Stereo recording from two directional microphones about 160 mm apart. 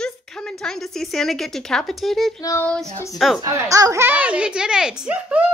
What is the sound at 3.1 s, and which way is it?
Speech, centre (ahead or behind).